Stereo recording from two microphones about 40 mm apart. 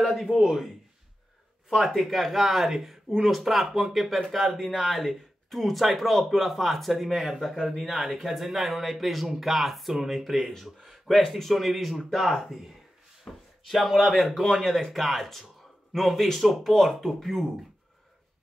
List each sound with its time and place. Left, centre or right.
0.3 s a man's voice: right
1.8 s speech: centre
14.4 s speech: centre